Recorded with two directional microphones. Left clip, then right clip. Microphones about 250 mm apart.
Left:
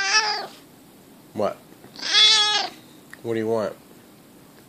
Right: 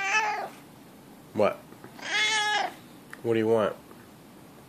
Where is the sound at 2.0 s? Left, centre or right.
Centre.